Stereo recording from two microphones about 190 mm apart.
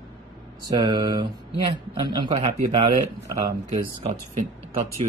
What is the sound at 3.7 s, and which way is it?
Speech, 30° right (ahead or behind).